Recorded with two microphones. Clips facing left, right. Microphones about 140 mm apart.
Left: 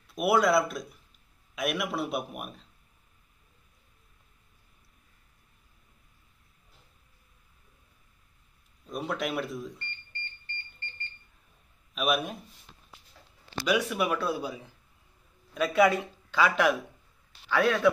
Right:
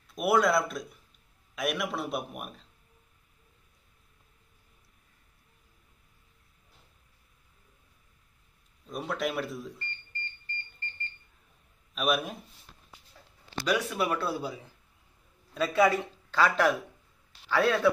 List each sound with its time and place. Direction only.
0.1 s a man's voice: centre (ahead or behind)
8.8 s a man's voice: centre (ahead or behind)
11.9 s a man's voice: centre (ahead or behind)
13.7 s speech: 15° left (ahead or behind)
15.5 s a man's voice: 5° left (ahead or behind)
17.5 s a man's voice: 5° right (ahead or behind)